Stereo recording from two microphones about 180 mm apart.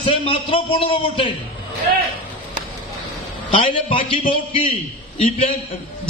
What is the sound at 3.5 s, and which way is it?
A man's voice, 30° left (ahead or behind).